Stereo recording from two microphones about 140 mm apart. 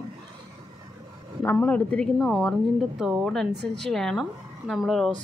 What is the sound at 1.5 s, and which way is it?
A woman's voice, 10° left (ahead or behind).